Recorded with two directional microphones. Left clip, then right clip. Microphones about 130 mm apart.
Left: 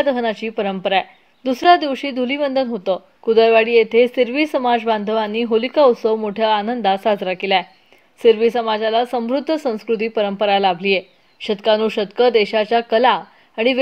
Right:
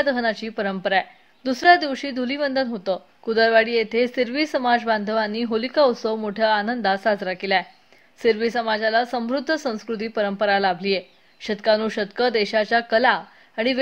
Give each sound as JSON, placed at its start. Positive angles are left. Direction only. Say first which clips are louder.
{"t": 0.0, "sound": "a woman's voice", "louder": "left 3 dB", "side_deg": 10}